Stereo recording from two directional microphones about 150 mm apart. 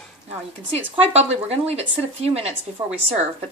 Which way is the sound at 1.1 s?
45° right (ahead or behind).